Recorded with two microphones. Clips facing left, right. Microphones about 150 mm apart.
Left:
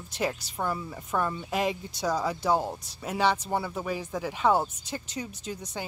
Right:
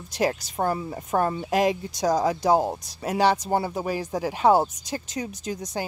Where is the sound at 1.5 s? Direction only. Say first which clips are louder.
Right 8 dB; 85° right.